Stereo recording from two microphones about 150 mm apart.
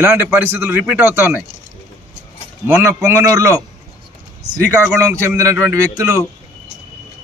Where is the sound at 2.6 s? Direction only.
15° right (ahead or behind).